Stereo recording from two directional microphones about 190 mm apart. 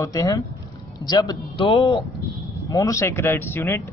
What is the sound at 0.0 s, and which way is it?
A man's voice, 20° left (ahead or behind).